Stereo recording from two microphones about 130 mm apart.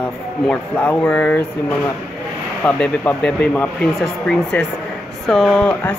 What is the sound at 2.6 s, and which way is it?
Speech, 15° left (ahead or behind).